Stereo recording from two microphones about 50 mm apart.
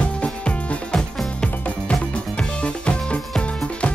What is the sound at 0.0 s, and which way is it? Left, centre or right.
Music, left.